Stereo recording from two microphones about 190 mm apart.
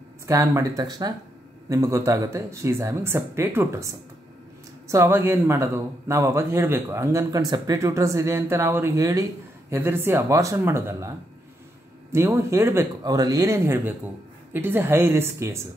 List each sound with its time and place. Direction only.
0.3 s a man's voice: 15° right (ahead or behind)